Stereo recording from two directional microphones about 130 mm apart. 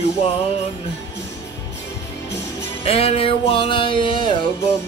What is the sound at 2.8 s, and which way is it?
Music, 50° left (ahead or behind).